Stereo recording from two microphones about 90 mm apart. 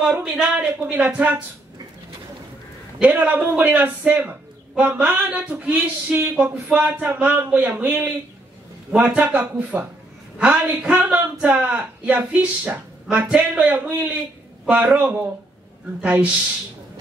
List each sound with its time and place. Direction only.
0.0 s speech: 10° right (ahead or behind)
3.0 s a man's voice: 15° right (ahead or behind)